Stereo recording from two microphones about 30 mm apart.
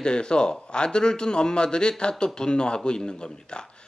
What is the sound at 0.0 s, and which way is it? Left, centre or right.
Speech, left.